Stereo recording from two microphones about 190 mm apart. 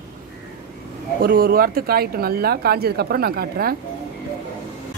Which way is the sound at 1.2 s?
50° right (ahead or behind).